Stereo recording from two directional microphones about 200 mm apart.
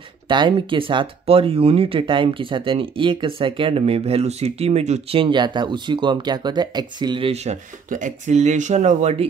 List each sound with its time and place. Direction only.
0.3 s speech: 25° right (ahead or behind)
7.9 s speech: 40° right (ahead or behind)